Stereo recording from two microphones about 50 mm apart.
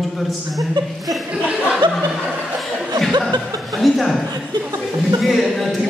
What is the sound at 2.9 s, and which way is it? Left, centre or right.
Chuckle, centre.